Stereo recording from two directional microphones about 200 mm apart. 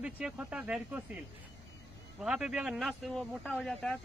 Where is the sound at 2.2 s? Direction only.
5° right (ahead or behind).